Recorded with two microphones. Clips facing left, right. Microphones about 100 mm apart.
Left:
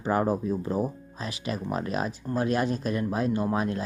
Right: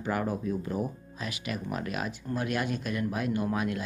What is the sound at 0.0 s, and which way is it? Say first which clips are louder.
Speech: left 5 dB; 30° left (ahead or behind).